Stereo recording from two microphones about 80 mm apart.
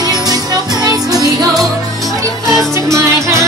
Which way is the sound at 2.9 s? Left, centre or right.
Right.